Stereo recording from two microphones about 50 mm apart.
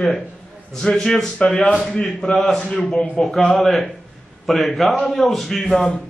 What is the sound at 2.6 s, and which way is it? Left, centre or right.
Speech, left.